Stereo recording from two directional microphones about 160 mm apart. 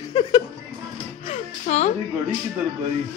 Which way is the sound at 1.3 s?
45° left (ahead or behind).